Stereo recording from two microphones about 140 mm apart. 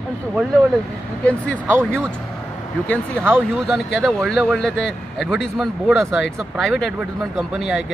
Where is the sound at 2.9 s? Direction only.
5° left (ahead or behind).